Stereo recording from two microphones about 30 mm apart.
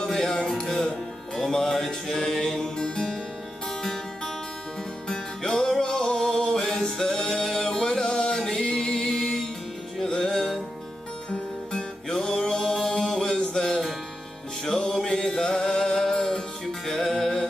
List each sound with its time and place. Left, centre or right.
0.0 s music: centre
2.0 s mantra: centre
2.8 s music: left
3.8 s music: centre
12.1 s mantra: centre
13.5 s music: centre